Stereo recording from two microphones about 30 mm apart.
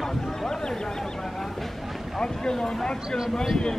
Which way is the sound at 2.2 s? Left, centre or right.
Left.